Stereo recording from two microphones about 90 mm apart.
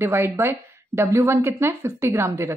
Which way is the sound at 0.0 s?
25° right (ahead or behind).